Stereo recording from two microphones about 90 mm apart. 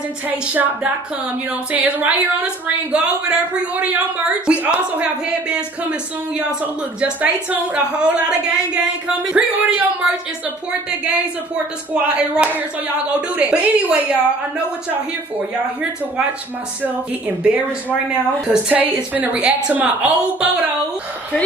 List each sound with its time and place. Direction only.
0.3 s a woman's voice: 15° right (ahead or behind)
18.5 s speech: 15° right (ahead or behind)